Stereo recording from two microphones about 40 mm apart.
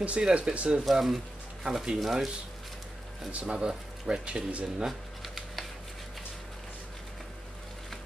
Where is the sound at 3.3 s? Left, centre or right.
Right.